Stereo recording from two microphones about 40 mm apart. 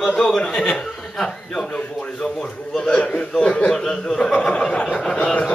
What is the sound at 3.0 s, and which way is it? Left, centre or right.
Speech, left.